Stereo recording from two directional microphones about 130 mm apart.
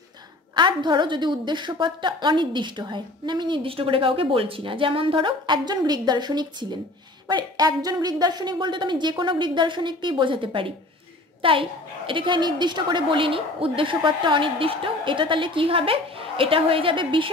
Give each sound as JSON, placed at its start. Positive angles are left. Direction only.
{"t": 0.6, "sound": "a woman's voice", "side_deg": -35}